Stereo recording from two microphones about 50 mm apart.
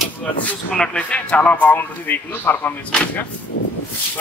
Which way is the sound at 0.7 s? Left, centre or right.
Centre.